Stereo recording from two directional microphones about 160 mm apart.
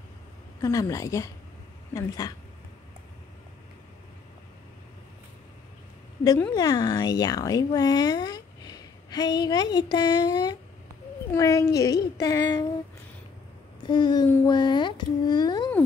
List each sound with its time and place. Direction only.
0.6 s speech: 20° left (ahead or behind)
6.5 s speech: 25° left (ahead or behind)
13.8 s speech: 30° left (ahead or behind)